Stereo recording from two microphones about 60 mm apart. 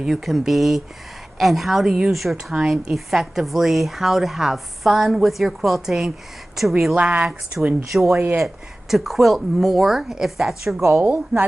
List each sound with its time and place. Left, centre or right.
0.0 s a woman's voice: centre
2.3 s speech: centre
2.7 s a woman's voice: centre
7.0 s a woman's voice: centre
8.9 s a woman's voice: centre
11.0 s a woman's voice: right